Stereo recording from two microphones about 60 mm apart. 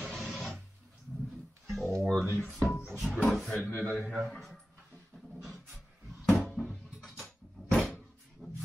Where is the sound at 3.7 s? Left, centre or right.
Left.